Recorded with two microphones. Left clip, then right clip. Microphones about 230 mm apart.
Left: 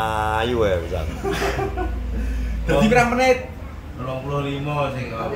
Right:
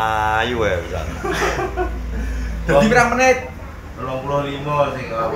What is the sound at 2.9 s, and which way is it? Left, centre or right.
Speech, centre.